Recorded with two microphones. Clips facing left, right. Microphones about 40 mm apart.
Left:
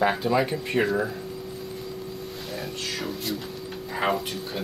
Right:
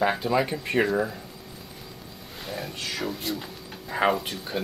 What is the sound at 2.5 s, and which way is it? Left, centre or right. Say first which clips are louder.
Music: right 1 dB; centre.